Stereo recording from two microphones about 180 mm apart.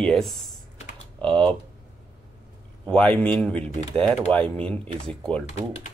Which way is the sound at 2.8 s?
5° left (ahead or behind).